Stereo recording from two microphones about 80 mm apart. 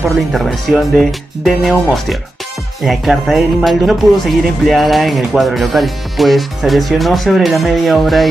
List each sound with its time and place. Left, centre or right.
0.3 s music: centre